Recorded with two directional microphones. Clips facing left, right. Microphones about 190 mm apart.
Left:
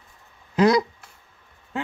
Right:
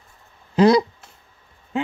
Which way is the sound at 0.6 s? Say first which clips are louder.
Right 3 dB; 30° right (ahead or behind).